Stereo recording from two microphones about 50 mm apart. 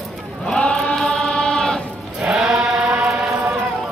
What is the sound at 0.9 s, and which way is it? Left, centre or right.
Choir, centre.